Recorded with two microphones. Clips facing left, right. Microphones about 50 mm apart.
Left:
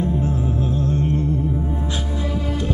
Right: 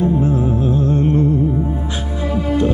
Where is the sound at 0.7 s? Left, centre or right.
Right.